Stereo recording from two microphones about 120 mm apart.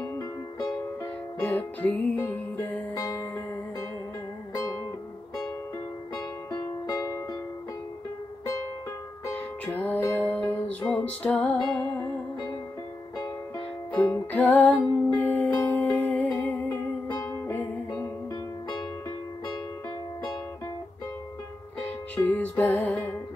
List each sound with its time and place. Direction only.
1.4 s music: 15° left (ahead or behind)
2.9 s music: 30° left (ahead or behind)
6.1 s music: 30° left (ahead or behind)
9.8 s music: 15° left (ahead or behind)
13.9 s music: 15° left (ahead or behind)
21.7 s music: 15° left (ahead or behind)